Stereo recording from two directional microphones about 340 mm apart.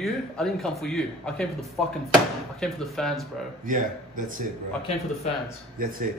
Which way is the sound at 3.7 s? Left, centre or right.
Right.